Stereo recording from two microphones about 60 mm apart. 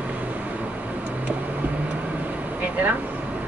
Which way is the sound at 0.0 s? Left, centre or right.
Right.